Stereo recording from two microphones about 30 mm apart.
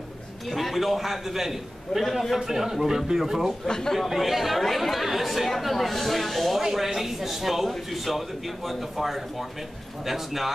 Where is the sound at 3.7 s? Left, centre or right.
Left.